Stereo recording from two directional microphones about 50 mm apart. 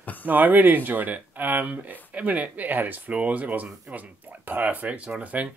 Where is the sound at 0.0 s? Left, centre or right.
Left.